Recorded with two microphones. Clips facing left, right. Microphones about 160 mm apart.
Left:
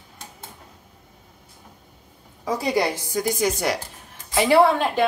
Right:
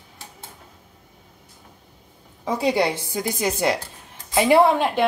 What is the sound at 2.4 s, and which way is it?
A woman's voice, 25° right (ahead or behind).